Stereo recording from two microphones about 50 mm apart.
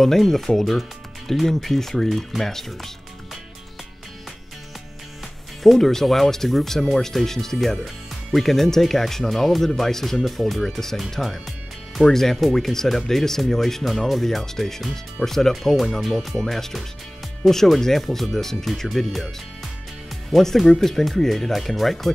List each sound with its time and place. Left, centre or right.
0.0 s speech: centre
5.6 s speech: centre
20.2 s speech: centre